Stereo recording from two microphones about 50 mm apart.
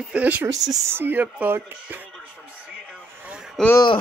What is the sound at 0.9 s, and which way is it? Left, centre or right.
Speech, right.